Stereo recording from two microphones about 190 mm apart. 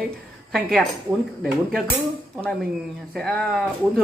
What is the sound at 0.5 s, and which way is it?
Speech, centre (ahead or behind).